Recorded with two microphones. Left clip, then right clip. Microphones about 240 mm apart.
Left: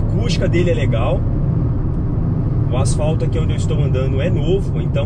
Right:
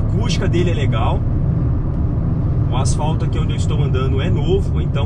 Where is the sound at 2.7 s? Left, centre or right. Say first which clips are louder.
Left 2 dB; centre.